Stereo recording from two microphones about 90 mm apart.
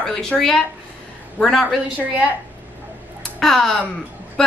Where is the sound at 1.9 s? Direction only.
15° right (ahead or behind).